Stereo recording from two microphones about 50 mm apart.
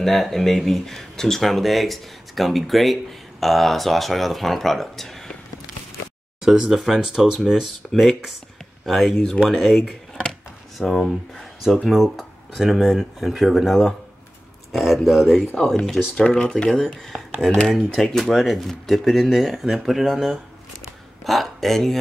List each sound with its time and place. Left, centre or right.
0.0 s speech: centre
6.4 s speech: centre
15.5 s speech: centre
17.6 s speech: centre